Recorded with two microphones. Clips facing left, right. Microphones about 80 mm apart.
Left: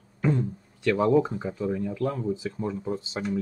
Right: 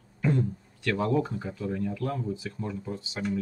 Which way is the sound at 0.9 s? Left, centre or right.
Left.